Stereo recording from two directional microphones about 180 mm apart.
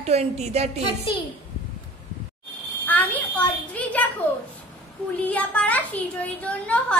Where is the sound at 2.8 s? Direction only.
10° left (ahead or behind).